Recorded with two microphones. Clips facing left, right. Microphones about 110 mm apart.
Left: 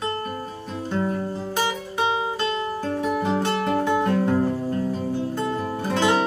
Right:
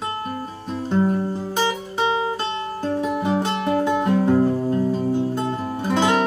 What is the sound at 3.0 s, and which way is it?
Music, 20° right (ahead or behind).